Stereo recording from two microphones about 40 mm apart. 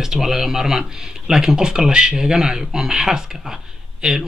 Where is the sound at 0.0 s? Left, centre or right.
Centre.